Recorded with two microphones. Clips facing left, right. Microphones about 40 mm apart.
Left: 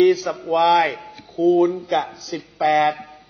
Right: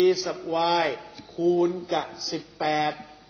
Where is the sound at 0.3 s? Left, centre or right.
Left.